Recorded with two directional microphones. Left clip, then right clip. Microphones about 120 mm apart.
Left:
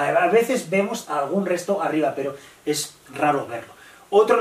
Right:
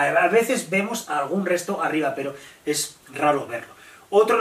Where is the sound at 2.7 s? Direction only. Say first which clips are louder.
Left 1 dB; 5° left (ahead or behind).